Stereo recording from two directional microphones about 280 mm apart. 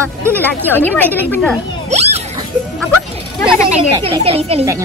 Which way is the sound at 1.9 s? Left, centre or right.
Right.